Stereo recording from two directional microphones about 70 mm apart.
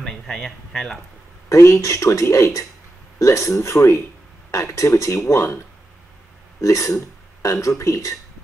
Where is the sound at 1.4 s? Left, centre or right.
Left.